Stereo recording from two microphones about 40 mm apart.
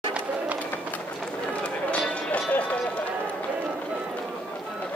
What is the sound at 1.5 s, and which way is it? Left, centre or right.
Run, left.